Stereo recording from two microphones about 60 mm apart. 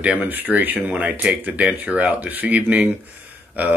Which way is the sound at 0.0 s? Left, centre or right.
Right.